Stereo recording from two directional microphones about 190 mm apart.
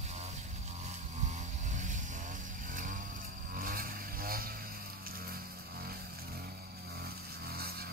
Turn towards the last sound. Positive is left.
turn(degrees=-55)  # may be behind; listen again after turning